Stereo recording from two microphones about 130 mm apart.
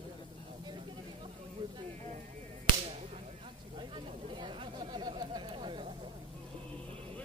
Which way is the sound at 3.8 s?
35° right (ahead or behind).